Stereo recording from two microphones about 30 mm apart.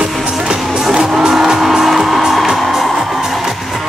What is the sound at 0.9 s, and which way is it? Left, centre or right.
Music, right.